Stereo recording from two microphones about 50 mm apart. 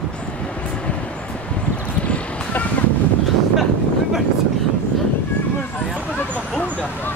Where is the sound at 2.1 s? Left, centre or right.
Left.